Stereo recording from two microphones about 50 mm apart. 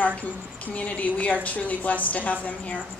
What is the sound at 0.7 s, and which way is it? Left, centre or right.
A woman's voice, left.